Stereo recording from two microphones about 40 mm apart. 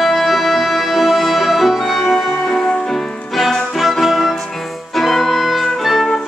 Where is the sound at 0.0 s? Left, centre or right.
Centre.